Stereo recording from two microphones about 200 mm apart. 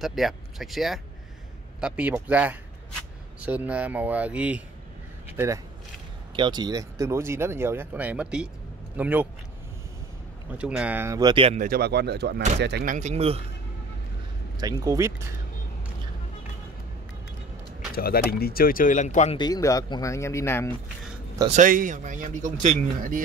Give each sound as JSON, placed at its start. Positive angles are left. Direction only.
{"t": 0.0, "sound": "speech", "side_deg": 0}
{"t": 6.3, "sound": "speech", "side_deg": -25}
{"t": 10.6, "sound": "speech", "side_deg": -5}
{"t": 11.5, "sound": "speech", "side_deg": -45}
{"t": 12.9, "sound": "speech", "side_deg": -35}
{"t": 14.6, "sound": "speech", "side_deg": -15}
{"t": 17.9, "sound": "speech", "side_deg": 50}
{"t": 19.3, "sound": "speech", "side_deg": 20}
{"t": 21.5, "sound": "speech", "side_deg": -40}